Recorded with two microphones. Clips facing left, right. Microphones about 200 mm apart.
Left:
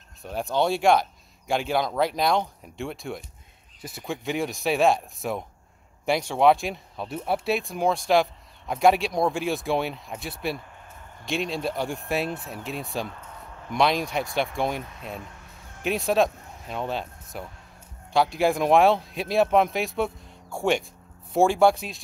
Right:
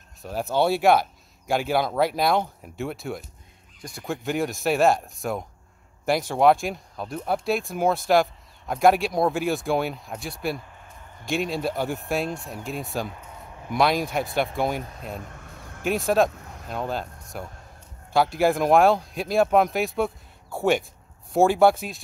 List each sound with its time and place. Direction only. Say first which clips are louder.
0.2 s speech: right 2 dB; centre (ahead or behind)
15.1 s a sound: right 2 dB; 55° right (ahead or behind)
15.8 s speech: right 1 dB; centre (ahead or behind)